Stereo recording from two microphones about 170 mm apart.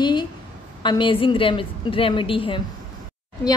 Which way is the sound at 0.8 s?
30° left (ahead or behind).